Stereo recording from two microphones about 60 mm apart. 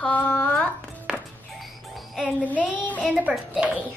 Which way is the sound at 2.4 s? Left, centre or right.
Left.